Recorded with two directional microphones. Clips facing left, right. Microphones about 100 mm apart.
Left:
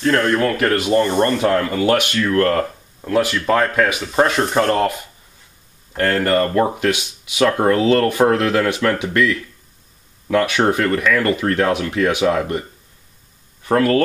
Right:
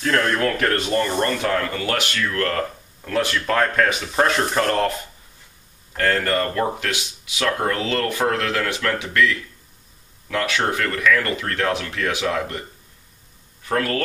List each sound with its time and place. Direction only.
0.0 s speech: centre (ahead or behind)
1.5 s speech: 15° left (ahead or behind)
3.1 s speech: 10° left (ahead or behind)
5.9 s speech: 20° left (ahead or behind)
13.7 s speech: 25° left (ahead or behind)